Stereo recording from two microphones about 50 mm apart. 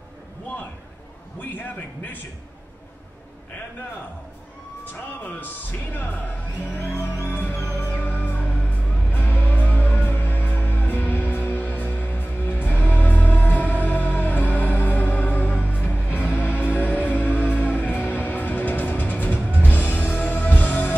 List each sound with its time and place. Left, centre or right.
1.4 s a man's voice: left
5.4 s speech: left
7.7 s music: left